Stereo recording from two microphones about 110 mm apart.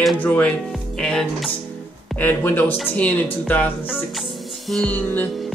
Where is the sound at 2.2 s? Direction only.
20° left (ahead or behind).